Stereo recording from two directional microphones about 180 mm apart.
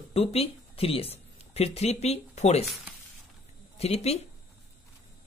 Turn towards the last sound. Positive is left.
turn(degrees=35)  # may be behind; listen again after turning